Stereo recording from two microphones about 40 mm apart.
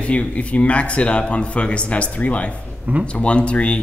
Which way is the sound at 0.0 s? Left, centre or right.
Left.